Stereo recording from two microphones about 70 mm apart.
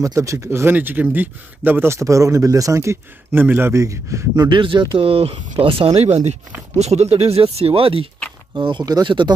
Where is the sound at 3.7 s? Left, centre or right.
Right.